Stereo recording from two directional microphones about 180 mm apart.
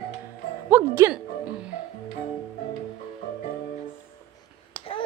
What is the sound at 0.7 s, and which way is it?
Speech, 15° right (ahead or behind).